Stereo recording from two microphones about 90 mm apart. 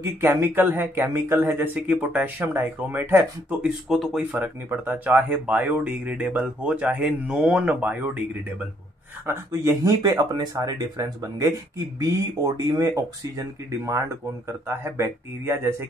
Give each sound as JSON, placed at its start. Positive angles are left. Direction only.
{"t": 0.0, "sound": "speech", "side_deg": -25}
{"t": 3.9, "sound": "speech", "side_deg": 0}
{"t": 4.2, "sound": "speech", "side_deg": -15}
{"t": 9.2, "sound": "speech", "side_deg": -25}
{"t": 9.7, "sound": "speech", "side_deg": -45}